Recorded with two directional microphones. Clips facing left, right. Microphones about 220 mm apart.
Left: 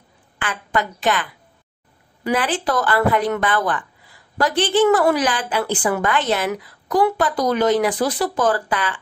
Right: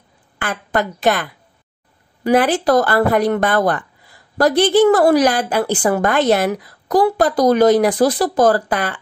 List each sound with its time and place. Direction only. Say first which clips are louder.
0.4 s a woman's voice: right 3 dB; 40° right (ahead or behind)
2.5 s a woman's voice: right 6 dB; 40° right (ahead or behind)